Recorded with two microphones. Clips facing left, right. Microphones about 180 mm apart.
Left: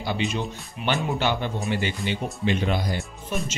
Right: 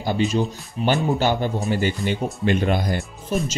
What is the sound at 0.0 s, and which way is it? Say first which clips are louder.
Speech: right 6 dB; 40° right (ahead or behind).